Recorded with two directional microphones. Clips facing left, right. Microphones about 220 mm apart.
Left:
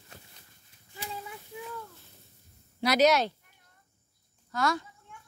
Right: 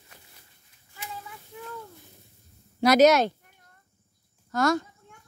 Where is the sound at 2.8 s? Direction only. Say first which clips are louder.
Right 5 dB; 45° right (ahead or behind).